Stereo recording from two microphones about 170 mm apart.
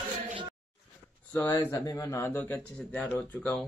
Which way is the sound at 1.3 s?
15° left (ahead or behind).